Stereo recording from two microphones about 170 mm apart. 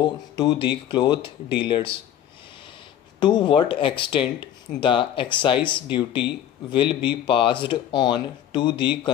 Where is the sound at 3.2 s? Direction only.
25° left (ahead or behind).